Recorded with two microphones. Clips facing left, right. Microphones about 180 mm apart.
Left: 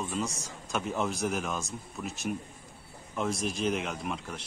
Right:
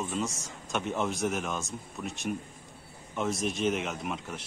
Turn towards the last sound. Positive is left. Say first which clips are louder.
# even
turn(degrees=0)  # may be behind; listen again after turning